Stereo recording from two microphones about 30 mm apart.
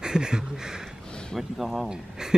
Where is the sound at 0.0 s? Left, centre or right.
Right.